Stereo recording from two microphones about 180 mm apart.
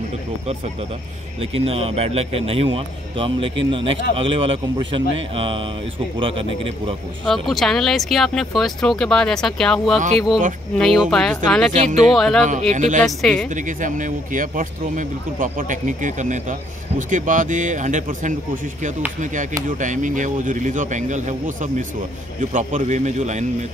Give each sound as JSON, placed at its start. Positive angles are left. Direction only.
{"t": 1.4, "sound": "a man's voice", "side_deg": -35}
{"t": 7.2, "sound": "speech", "side_deg": 0}
{"t": 11.7, "sound": "a man's voice", "side_deg": -40}
{"t": 12.2, "sound": "speech", "side_deg": 0}
{"t": 12.4, "sound": "speech", "side_deg": -45}
{"t": 13.0, "sound": "speech", "side_deg": 0}
{"t": 13.5, "sound": "a man's voice", "side_deg": -45}